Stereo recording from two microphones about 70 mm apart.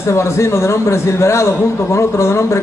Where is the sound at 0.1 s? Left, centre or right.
Left.